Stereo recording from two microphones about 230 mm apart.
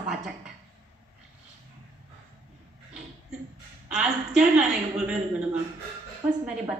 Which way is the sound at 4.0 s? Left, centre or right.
Centre.